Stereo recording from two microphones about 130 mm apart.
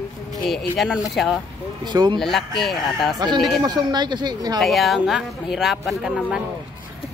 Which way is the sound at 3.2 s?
30° right (ahead or behind).